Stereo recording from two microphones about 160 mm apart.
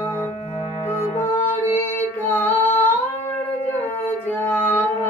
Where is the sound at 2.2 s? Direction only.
10° left (ahead or behind).